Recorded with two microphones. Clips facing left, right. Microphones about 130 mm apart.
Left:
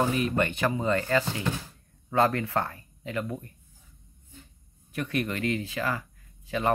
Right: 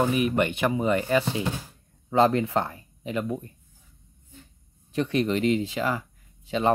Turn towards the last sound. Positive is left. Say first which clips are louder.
# right 4 dB
turn(degrees=-20)  # may be behind; listen again after turning